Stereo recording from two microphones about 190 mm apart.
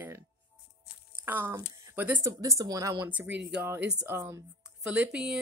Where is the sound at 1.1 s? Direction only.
10° right (ahead or behind).